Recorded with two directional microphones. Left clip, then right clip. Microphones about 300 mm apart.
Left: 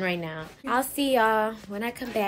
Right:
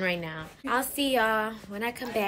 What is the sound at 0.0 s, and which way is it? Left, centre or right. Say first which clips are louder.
A woman's voice: left 1 dB; centre.